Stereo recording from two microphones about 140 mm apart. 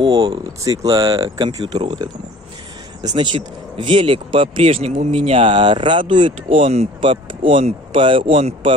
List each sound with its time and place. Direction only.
0.0 s speech: 35° right (ahead or behind)
3.0 s speech: 30° right (ahead or behind)